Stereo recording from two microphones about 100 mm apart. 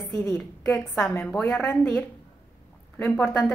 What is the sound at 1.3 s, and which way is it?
A woman's voice, 20° left (ahead or behind).